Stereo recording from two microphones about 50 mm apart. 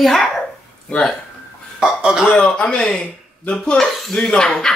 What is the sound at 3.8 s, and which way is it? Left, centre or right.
Speech, centre.